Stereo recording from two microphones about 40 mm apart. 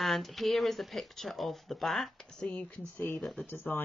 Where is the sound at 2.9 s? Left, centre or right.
Left.